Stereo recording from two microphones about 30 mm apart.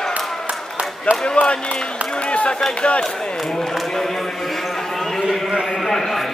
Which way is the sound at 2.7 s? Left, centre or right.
Left.